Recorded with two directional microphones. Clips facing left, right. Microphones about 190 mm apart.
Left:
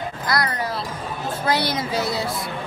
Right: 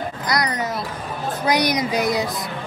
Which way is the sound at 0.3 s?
20° right (ahead or behind).